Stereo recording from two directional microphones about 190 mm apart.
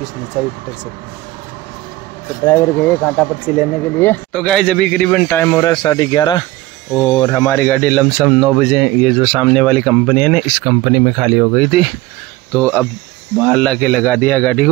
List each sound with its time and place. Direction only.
2.4 s speech: 10° left (ahead or behind)
5.7 s speech: 20° left (ahead or behind); by 10.7 s 5° left (ahead or behind)
10.7 s speech: 15° right (ahead or behind)
11.1 s speech: 5° right (ahead or behind)
13.4 s speech: 5° left (ahead or behind)